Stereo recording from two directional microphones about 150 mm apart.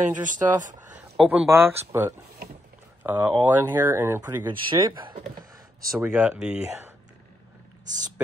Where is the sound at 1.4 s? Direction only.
15° right (ahead or behind).